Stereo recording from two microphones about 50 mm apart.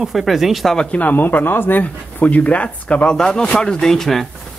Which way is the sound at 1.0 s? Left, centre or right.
Left.